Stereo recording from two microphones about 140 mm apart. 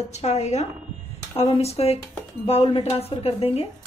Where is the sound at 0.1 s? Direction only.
50° left (ahead or behind).